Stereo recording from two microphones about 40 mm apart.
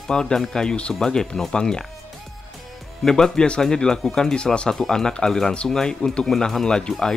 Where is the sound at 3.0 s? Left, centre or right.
Centre.